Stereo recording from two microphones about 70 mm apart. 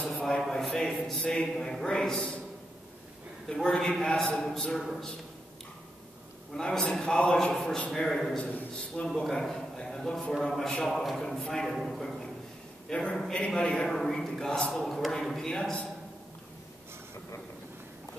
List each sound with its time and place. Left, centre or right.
0.1 s a man's voice: centre
3.4 s a man's voice: centre
6.5 s a man's voice: centre
8.4 s a man's voice: centre
9.0 s a man's voice: centre